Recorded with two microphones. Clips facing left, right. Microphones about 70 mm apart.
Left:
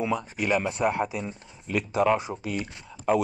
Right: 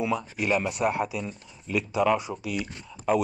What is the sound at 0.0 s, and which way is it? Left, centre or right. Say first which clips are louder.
A man's voice: even; left.